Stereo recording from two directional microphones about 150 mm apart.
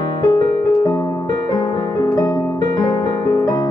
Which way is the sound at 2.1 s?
25° left (ahead or behind).